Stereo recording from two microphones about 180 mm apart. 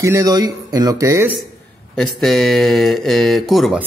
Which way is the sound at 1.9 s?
Centre (ahead or behind).